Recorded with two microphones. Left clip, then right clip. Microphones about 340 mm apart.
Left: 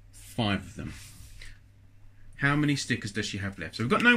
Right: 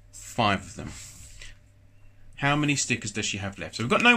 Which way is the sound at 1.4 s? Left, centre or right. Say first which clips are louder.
Right 2 dB; centre.